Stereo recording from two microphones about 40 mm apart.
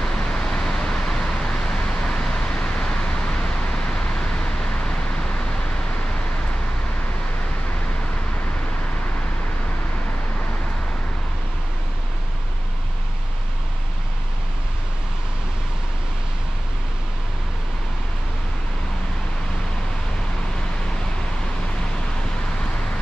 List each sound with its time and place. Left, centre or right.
0.0 s vehicle: left